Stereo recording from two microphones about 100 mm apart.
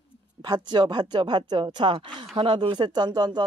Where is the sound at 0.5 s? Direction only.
45° right (ahead or behind).